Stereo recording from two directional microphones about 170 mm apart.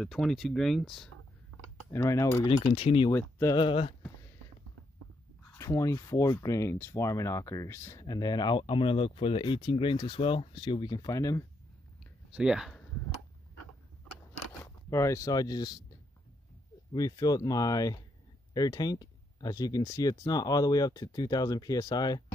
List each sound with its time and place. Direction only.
0.0 s speech: centre (ahead or behind)
1.9 s cutlery: 15° left (ahead or behind)
2.6 s speech: 30° left (ahead or behind)
3.1 s cutlery: 15° left (ahead or behind)
3.5 s speech: 30° left (ahead or behind)
5.6 s speech: 15° left (ahead or behind)
12.4 s speech: 5° right (ahead or behind)
14.6 s speech: 15° left (ahead or behind)
16.9 s speech: 20° left (ahead or behind)